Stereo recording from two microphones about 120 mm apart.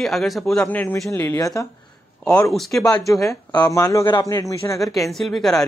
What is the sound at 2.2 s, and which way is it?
Speech, 10° left (ahead or behind).